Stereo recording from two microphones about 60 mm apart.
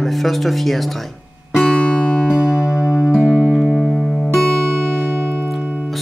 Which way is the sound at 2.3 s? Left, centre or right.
Centre.